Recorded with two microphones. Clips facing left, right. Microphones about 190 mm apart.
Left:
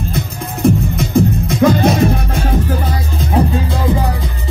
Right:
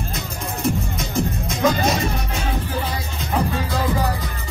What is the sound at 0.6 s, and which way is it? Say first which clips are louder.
Music: left 10 dB; 60° left (ahead or behind).